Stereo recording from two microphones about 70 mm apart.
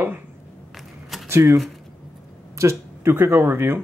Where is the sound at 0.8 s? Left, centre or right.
Centre.